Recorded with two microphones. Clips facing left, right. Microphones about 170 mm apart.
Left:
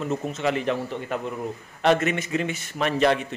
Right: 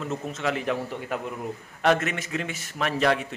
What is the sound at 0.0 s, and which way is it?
A man's voice, centre (ahead or behind).